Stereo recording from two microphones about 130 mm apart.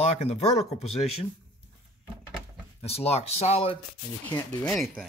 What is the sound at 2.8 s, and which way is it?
Speech, 50° left (ahead or behind).